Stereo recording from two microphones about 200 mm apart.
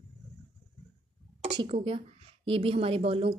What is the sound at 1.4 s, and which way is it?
A woman's voice, 30° right (ahead or behind).